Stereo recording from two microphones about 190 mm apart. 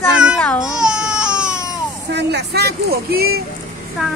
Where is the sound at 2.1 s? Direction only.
60° right (ahead or behind).